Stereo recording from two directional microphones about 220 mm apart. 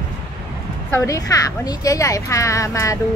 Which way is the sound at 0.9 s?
15° left (ahead or behind).